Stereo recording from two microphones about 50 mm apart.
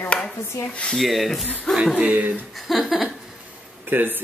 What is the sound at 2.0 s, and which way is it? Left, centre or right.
Speech, right.